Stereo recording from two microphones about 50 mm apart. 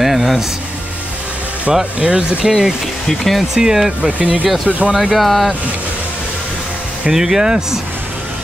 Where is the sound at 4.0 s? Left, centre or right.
Right.